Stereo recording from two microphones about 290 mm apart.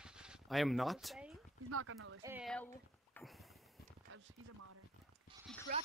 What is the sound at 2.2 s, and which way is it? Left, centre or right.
Speech, centre.